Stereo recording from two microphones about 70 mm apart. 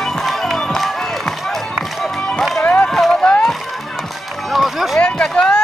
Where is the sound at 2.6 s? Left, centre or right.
Centre.